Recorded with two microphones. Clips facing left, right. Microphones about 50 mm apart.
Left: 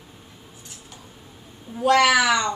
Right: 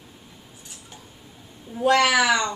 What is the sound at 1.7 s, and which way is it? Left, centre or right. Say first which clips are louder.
Speech: right 1 dB; centre.